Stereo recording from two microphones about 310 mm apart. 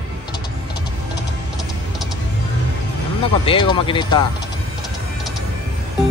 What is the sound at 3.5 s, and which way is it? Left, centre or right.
Speech, centre.